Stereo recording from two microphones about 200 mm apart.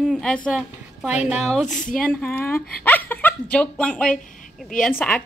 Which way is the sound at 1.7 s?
40° left (ahead or behind).